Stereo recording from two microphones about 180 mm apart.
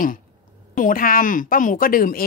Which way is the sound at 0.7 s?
50° left (ahead or behind).